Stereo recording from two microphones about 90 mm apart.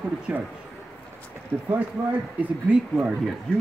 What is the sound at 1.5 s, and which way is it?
Speech, 20° right (ahead or behind).